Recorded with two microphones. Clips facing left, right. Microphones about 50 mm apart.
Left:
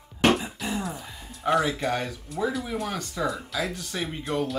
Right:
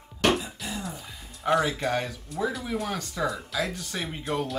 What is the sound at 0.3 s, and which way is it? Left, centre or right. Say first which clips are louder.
Throat clearing: left 2 dB; centre.